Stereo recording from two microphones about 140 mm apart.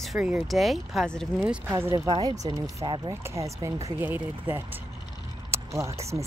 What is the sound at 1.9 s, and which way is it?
Speech, 30° right (ahead or behind).